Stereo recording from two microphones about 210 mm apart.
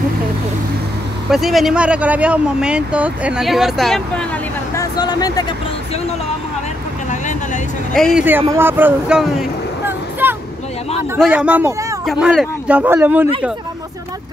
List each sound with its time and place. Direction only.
1.3 s speech: centre (ahead or behind)
4.7 s speech: 20° left (ahead or behind)
7.1 s a sound: 35° left (ahead or behind)
7.9 s speech: centre (ahead or behind)